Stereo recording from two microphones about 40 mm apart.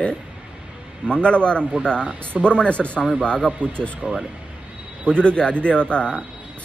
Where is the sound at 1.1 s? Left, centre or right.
Left.